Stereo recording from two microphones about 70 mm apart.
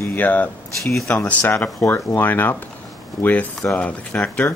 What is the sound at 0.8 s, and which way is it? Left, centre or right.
Speech, centre.